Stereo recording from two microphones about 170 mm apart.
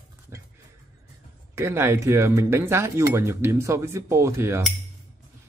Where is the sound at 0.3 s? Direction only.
15° right (ahead or behind).